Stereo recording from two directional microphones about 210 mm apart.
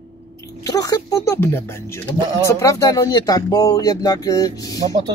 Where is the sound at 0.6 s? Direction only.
15° left (ahead or behind).